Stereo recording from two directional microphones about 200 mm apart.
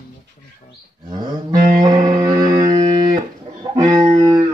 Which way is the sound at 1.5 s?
45° right (ahead or behind).